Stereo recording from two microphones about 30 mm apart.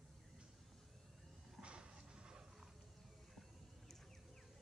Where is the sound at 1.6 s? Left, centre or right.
Right.